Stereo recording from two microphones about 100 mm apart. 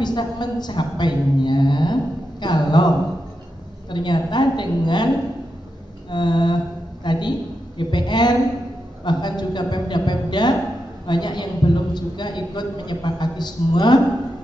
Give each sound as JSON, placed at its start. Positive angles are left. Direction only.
{"t": 0.0, "sound": "a man's voice", "side_deg": 45}
{"t": 3.9, "sound": "a man's voice", "side_deg": 45}